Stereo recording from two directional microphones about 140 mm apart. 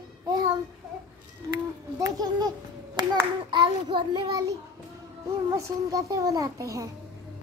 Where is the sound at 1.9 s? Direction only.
25° right (ahead or behind).